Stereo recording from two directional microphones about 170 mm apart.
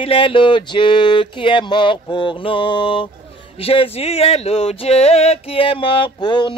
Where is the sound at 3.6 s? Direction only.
35° left (ahead or behind).